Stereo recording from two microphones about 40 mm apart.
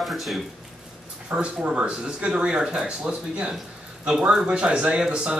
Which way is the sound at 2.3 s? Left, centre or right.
Right.